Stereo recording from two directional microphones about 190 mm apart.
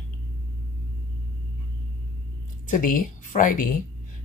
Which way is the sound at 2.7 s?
45° left (ahead or behind).